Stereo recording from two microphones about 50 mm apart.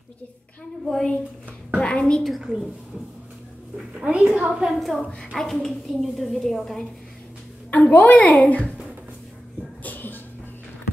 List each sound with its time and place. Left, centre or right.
0.8 s a woman's voice: centre
1.8 s a woman's voice: centre
4.0 s a woman's voice: right
4.7 s a woman's voice: centre
7.7 s a child's voice: left
9.8 s music: left